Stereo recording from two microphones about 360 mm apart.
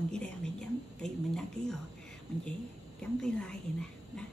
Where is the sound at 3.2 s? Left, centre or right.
Centre.